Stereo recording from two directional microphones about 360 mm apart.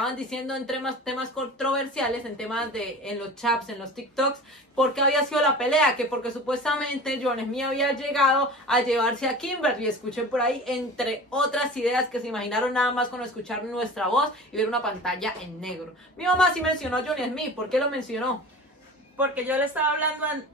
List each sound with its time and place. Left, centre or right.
0.0 s speech: centre
4.7 s speech: centre